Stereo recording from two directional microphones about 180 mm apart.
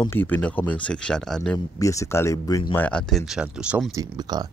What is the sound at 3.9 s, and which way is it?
Speech, 20° right (ahead or behind).